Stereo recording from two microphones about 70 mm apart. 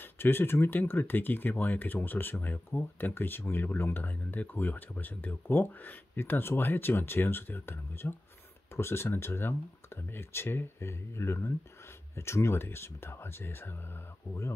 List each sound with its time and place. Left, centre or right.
0.0 s speech: left